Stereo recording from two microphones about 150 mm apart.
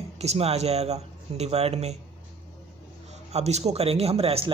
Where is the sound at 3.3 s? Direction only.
45° right (ahead or behind).